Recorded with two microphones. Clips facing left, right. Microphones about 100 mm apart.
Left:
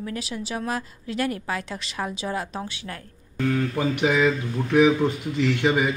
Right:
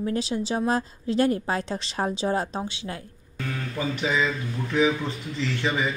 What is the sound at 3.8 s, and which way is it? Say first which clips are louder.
Speech: left 2 dB; 55° left (ahead or behind).